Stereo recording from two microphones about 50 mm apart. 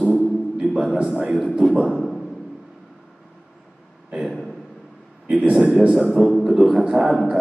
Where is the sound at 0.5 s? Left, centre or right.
Centre.